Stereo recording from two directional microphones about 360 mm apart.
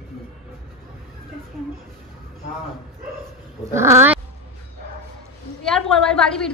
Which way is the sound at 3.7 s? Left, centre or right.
Centre.